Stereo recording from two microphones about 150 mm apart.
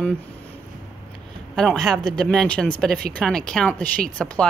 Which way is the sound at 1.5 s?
5° left (ahead or behind).